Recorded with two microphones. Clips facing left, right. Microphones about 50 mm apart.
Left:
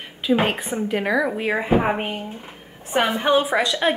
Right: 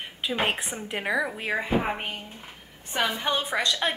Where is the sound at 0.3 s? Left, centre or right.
Centre.